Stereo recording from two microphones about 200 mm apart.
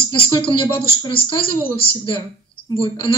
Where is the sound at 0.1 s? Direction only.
25° left (ahead or behind).